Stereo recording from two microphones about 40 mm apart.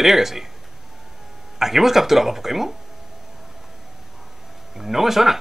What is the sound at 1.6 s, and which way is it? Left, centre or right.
Speech, centre.